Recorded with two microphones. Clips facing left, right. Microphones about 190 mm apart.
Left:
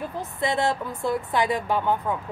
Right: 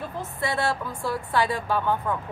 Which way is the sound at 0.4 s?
20° left (ahead or behind).